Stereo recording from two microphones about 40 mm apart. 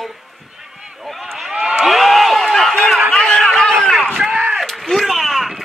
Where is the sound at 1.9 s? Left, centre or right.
Centre.